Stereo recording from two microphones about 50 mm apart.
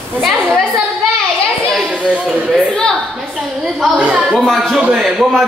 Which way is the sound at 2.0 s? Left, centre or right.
Right.